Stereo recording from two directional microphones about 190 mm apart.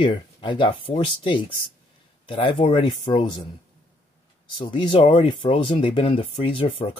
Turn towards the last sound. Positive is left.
turn(degrees=30)  # may be behind; listen again after turning